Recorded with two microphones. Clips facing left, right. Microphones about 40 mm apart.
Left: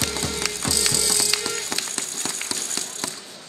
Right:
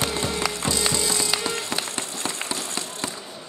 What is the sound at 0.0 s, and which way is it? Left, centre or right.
Music, right.